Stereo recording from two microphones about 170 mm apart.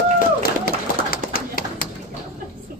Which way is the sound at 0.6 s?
60° left (ahead or behind).